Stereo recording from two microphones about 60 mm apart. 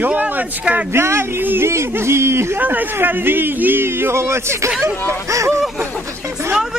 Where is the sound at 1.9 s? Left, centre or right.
Right.